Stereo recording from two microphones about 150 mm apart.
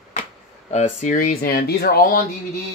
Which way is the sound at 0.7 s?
50° left (ahead or behind).